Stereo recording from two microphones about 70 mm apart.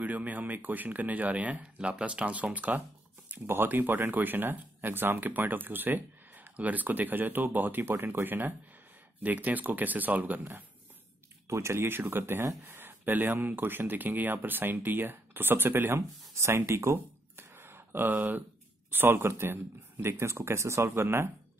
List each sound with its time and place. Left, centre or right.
0.0 s speech: right
11.4 s speech: right